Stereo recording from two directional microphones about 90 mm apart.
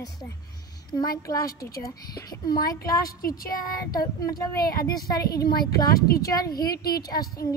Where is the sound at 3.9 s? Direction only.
40° left (ahead or behind).